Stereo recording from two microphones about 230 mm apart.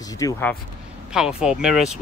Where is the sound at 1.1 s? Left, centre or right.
Centre.